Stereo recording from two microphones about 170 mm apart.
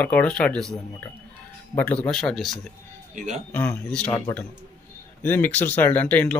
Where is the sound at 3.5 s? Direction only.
10° left (ahead or behind).